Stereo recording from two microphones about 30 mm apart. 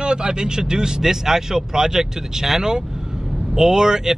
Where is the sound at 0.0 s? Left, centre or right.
Right.